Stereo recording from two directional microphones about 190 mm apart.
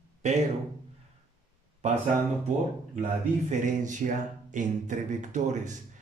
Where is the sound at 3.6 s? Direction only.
40° right (ahead or behind).